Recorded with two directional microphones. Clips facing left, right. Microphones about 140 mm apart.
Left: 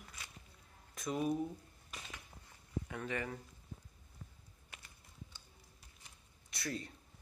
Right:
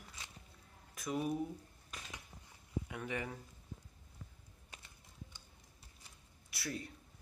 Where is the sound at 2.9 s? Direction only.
15° right (ahead or behind).